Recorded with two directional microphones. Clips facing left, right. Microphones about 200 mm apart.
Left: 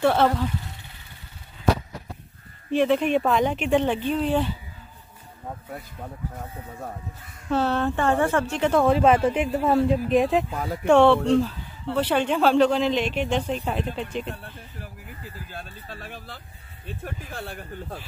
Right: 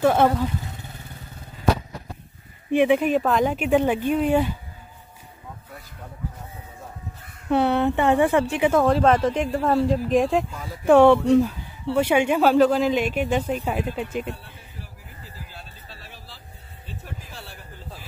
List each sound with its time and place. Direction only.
0.0 s speech: 10° right (ahead or behind)
2.7 s speech: 15° right (ahead or behind)
3.1 s speech: centre (ahead or behind)
7.4 s speech: 15° right (ahead or behind)
8.8 s speech: 10° left (ahead or behind)
10.5 s speech: 55° left (ahead or behind)
10.9 s speech: 10° right (ahead or behind)
14.3 s a sound: 55° left (ahead or behind)